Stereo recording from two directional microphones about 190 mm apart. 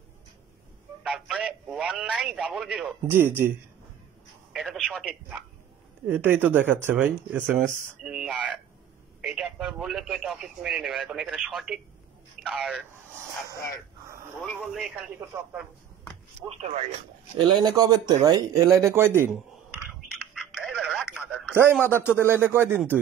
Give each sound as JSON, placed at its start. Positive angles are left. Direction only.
{"t": 1.0, "sound": "radio", "side_deg": 0}
{"t": 3.1, "sound": "speech", "side_deg": -10}
{"t": 14.6, "sound": "speech", "side_deg": -5}
{"t": 16.4, "sound": "speech", "side_deg": -35}
{"t": 17.4, "sound": "a sound", "side_deg": -20}
{"t": 22.2, "sound": "speech", "side_deg": -10}